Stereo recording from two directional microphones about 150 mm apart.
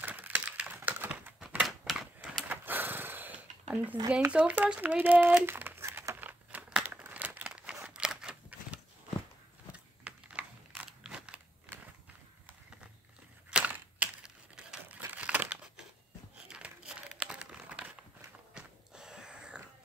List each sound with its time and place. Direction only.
0.0 s typing: 10° right (ahead or behind)
2.1 s a sound: 10° right (ahead or behind)
4.1 s crumpling: 10° right (ahead or behind)
9.7 s a sound: 10° right (ahead or behind)
13.5 s crumpling: 10° right (ahead or behind)
18.5 s biting: 5° right (ahead or behind)